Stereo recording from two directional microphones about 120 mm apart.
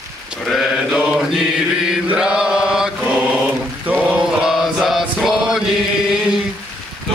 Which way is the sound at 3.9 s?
10° right (ahead or behind).